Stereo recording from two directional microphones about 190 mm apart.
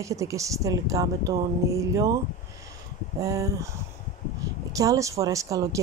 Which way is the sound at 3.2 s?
15° right (ahead or behind).